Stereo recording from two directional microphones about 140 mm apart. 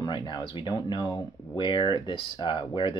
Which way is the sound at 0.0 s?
30° left (ahead or behind).